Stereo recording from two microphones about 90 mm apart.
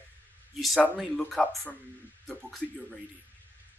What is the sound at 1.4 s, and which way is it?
Speech, 15° left (ahead or behind).